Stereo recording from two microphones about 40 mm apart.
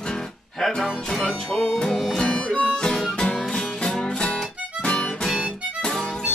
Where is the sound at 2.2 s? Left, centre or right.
Left.